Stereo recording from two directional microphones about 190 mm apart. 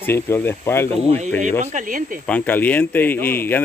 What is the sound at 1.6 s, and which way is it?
Speech, 45° right (ahead or behind).